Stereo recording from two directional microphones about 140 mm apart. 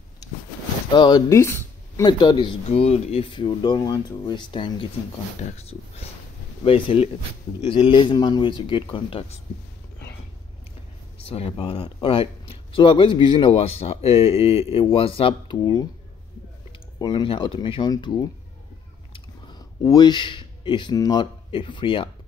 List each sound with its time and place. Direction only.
0.9 s speech: 30° left (ahead or behind)
1.4 s a sound: 20° left (ahead or behind)
2.0 s speech: 30° left (ahead or behind)
2.7 s speech: 45° left (ahead or behind)
5.6 s speech: 50° left (ahead or behind)
11.2 s speech: 45° left (ahead or behind)
15.5 s speech: 25° left (ahead or behind)
17.0 s speech: 35° left (ahead or behind)
19.8 s speech: 30° left (ahead or behind)